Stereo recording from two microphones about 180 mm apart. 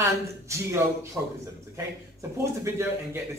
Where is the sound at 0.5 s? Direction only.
15° right (ahead or behind).